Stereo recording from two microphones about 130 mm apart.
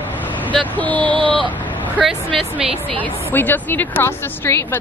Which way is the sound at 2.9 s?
15° left (ahead or behind).